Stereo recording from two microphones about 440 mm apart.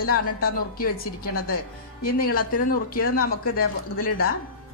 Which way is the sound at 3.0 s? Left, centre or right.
Left.